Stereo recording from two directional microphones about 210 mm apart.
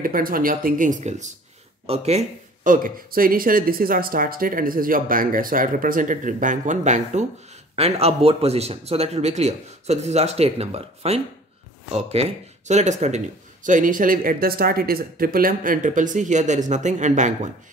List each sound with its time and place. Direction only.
0.0 s a man's voice: 40° right (ahead or behind)